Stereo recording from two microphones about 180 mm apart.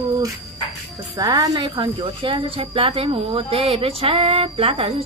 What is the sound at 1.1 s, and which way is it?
A woman's voice, 20° right (ahead or behind).